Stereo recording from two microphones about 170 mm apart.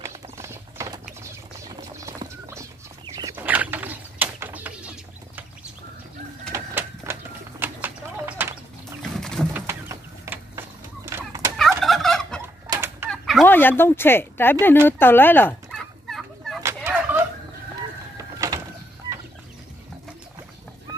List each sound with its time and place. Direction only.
0.0 s clip-clop: 15° right (ahead or behind)
1.8 s patter: 20° right (ahead or behind)
3.3 s bird: 10° right (ahead or behind)
9.1 s boat: centre (ahead or behind)
9.5 s a sound: 15° right (ahead or behind)
11.1 s fowl: 20° right (ahead or behind)
11.8 s turkey: centre (ahead or behind)
12.6 s fowl: 15° right (ahead or behind)
13.1 s fowl: centre (ahead or behind)
13.5 s speech: 10° left (ahead or behind)
15.7 s fowl: centre (ahead or behind)
16.6 s fowl: 15° right (ahead or behind)
18.1 s bird: 20° right (ahead or behind)